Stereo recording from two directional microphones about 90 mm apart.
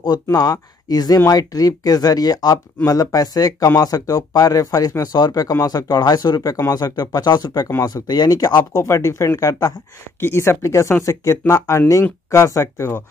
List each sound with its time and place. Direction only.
0.0 s speech: 45° left (ahead or behind)
8.7 s speech: 35° left (ahead or behind)
10.2 s speech: 30° left (ahead or behind)